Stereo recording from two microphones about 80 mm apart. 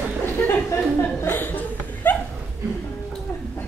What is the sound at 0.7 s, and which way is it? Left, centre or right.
Chuckle, left.